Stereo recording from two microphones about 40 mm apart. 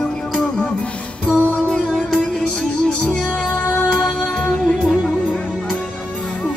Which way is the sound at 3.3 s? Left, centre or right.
Left.